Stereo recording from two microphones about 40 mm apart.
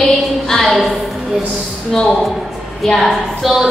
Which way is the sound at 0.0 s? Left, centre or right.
Centre.